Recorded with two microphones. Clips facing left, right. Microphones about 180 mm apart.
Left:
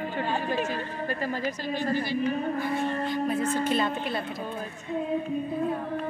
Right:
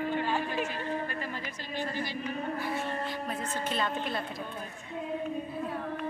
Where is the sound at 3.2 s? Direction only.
10° left (ahead or behind).